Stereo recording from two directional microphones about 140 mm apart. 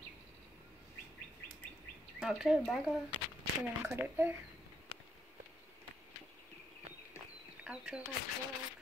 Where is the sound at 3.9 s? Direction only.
15° right (ahead or behind).